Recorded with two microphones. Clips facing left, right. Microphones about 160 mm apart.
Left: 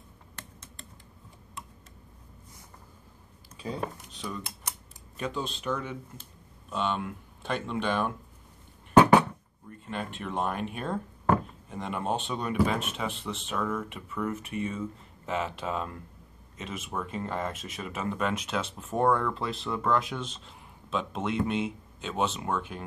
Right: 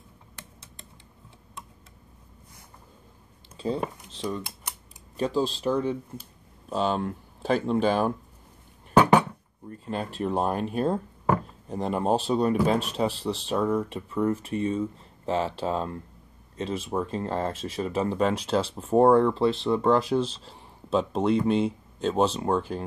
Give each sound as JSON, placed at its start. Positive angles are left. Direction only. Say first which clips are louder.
{"t": 3.5, "sound": "speech", "louder": "right 6 dB", "side_deg": -30}
{"t": 9.7, "sound": "speech", "louder": "right 4 dB", "side_deg": -35}